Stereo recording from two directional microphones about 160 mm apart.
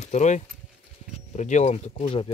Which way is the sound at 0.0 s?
45° left (ahead or behind).